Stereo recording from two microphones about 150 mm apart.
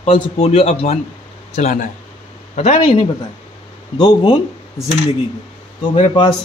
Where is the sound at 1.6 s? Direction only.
60° left (ahead or behind).